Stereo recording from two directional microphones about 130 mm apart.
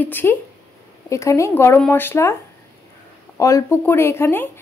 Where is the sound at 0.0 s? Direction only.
15° left (ahead or behind).